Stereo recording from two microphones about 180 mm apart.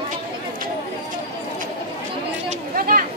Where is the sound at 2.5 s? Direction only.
50° right (ahead or behind).